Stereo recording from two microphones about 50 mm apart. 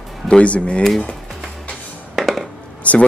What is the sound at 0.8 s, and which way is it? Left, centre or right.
Speech, centre.